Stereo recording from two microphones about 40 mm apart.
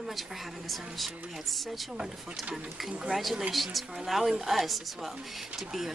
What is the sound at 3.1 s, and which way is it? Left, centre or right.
Speech, centre.